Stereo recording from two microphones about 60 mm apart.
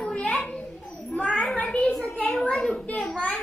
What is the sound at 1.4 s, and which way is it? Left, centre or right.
A child's voice, centre.